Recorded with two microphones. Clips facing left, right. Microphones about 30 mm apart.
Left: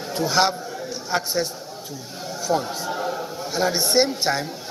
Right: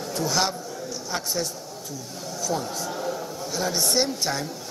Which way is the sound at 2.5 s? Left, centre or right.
Left.